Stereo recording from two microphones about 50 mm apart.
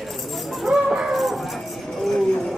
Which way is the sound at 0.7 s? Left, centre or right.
Centre.